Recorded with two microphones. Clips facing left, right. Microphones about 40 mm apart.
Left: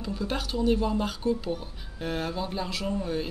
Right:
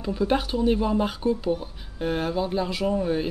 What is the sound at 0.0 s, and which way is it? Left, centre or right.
A woman's voice, centre.